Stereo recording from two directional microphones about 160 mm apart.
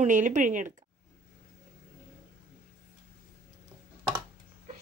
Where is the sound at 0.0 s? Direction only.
50° right (ahead or behind).